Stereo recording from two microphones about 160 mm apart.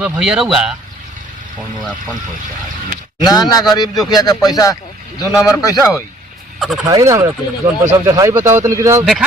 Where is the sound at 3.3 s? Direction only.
25° left (ahead or behind).